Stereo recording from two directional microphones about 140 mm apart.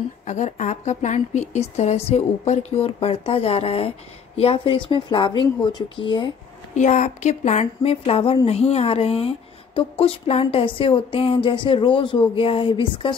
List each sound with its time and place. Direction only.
0.3 s speech: 60° left (ahead or behind); by 6.3 s 35° left (ahead or behind)
6.7 s speech: 60° left (ahead or behind); by 13.1 s 35° left (ahead or behind)